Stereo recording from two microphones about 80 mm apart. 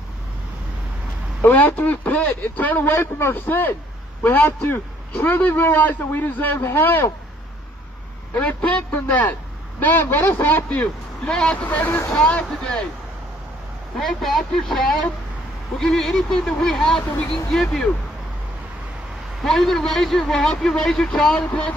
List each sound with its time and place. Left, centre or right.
1.4 s a man's voice: left
8.4 s a man's voice: centre
11.6 s a man's voice: centre
13.9 s a man's voice: centre
19.4 s a man's voice: centre